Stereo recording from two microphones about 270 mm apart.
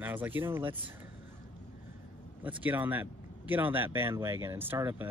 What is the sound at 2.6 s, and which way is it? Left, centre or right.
Speech, centre.